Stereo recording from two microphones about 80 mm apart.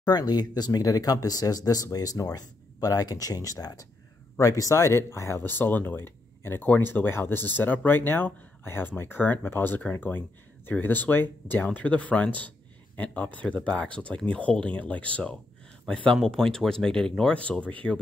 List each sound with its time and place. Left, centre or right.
0.0 s speech: left; by 17.9 s centre